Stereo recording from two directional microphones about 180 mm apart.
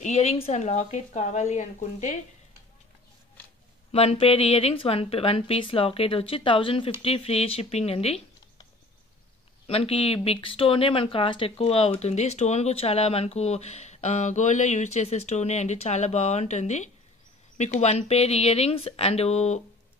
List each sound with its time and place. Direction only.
0.0 s speech: 35° left (ahead or behind)
3.9 s speech: 35° left (ahead or behind)
9.7 s speech: 30° left (ahead or behind)